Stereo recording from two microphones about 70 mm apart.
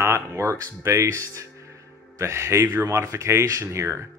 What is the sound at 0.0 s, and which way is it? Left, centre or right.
Speech, right.